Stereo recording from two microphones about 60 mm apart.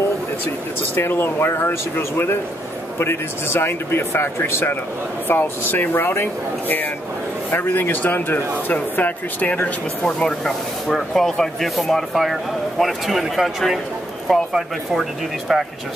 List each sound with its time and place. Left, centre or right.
0.9 s speech: left
10.0 s speech: centre